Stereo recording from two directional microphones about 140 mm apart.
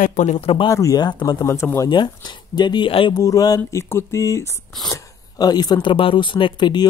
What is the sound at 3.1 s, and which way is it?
Speech, 25° left (ahead or behind).